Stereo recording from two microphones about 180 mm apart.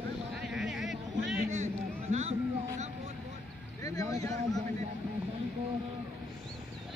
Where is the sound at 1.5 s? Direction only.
40° right (ahead or behind).